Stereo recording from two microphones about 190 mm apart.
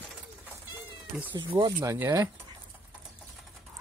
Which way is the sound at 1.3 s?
25° right (ahead or behind).